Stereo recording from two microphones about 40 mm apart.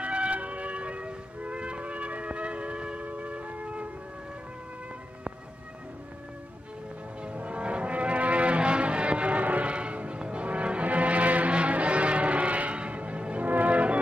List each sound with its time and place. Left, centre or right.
0.0 s music: right
3.0 s wind instrument: right
7.3 s music: right